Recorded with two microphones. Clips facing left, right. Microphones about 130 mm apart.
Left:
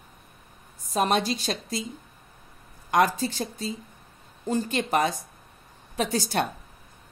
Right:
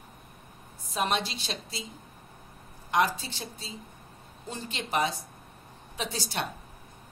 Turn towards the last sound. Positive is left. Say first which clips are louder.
# left 8 dB
turn(degrees=50)  # may be behind; listen again after turning